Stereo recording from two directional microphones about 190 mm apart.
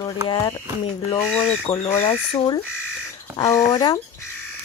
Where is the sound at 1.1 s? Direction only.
15° left (ahead or behind).